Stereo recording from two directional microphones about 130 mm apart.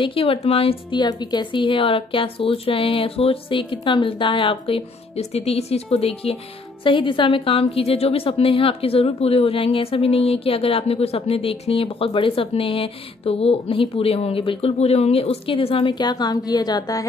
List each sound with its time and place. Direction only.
0.0 s a woman's voice: 45° left (ahead or behind)